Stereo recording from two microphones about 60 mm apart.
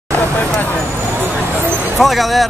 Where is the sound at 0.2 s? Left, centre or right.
Left.